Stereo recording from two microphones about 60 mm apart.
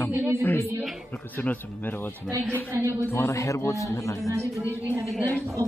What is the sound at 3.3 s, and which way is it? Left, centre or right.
Speech, left.